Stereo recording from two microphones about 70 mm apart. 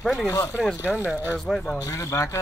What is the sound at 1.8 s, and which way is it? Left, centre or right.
Speech, left.